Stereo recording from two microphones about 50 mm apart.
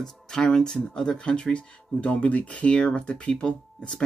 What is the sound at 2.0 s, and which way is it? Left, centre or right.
A man's voice, left.